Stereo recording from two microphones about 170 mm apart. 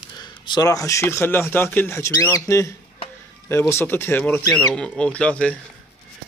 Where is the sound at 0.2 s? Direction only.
25° left (ahead or behind).